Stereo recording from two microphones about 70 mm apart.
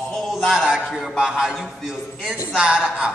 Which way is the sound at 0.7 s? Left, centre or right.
Centre.